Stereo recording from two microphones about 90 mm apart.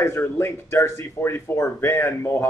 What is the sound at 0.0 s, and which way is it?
Speech, 30° left (ahead or behind).